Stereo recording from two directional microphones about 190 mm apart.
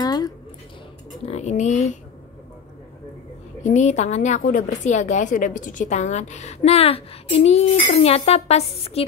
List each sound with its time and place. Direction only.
0.0 s a sound: 20° left (ahead or behind)
1.2 s speech: 35° left (ahead or behind)
3.6 s a woman's voice: 35° left (ahead or behind)